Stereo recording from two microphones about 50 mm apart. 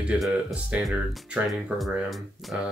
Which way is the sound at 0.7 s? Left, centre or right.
Right.